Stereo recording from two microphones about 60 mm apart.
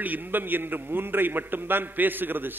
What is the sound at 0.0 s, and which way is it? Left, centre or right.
A man's voice, right.